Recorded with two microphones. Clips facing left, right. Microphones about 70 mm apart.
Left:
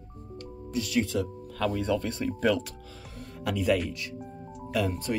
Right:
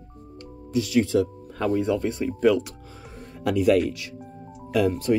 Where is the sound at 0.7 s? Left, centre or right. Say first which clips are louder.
Right 6 dB; left.